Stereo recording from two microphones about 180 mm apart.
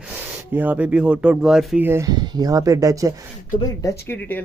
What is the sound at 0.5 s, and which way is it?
Speech, 10° right (ahead or behind).